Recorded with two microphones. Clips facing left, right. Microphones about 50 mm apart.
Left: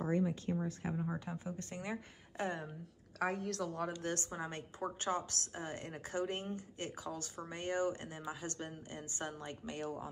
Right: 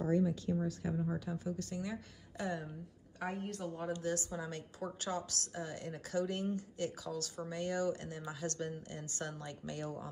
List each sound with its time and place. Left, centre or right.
0.0 s a woman's voice: left
3.2 s a woman's voice: left
4.0 s a woman's voice: left; by 10.0 s centre